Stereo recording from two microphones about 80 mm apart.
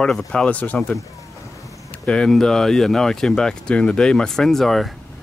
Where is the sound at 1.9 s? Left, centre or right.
Centre.